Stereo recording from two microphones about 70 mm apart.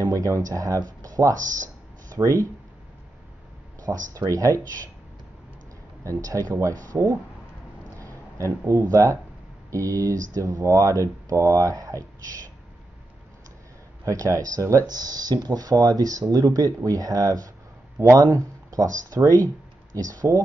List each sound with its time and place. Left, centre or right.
0.0 s speech: right
2.0 s a sound: right
3.8 s speech: right
6.0 s speech: right
8.0 s a sound: right
8.9 s speech: right
14.0 s speech: right
14.9 s speech: right